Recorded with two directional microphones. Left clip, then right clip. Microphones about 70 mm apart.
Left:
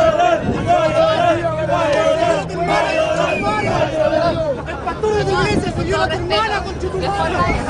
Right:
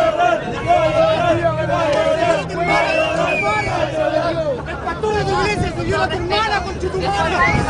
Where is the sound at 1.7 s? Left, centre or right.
Left.